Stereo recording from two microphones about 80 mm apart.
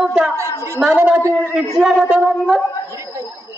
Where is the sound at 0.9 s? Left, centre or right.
Right.